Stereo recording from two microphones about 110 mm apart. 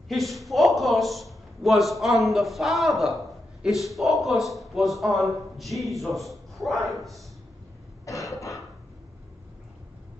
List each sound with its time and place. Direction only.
0.1 s a man's voice: centre (ahead or behind)
8.0 s cough: 30° left (ahead or behind)